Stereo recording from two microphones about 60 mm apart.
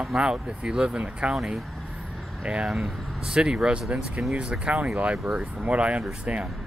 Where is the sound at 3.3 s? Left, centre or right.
Centre.